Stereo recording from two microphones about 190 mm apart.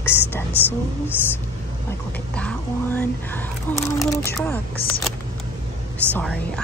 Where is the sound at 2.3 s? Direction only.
5° left (ahead or behind).